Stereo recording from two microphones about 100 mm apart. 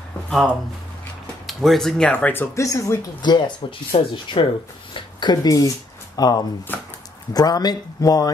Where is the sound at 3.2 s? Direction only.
50° left (ahead or behind).